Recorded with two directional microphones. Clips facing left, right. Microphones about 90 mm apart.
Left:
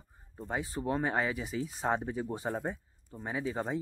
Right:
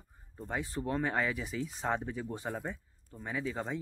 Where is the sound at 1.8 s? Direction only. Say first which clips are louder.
Left 3 dB; 20° left (ahead or behind).